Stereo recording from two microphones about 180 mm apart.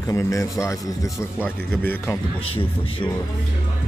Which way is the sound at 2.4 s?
30° left (ahead or behind).